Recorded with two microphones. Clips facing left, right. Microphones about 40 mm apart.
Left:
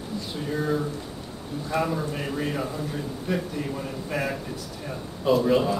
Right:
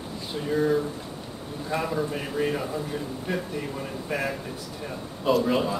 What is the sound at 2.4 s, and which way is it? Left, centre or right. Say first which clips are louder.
Speech: right 4 dB; centre.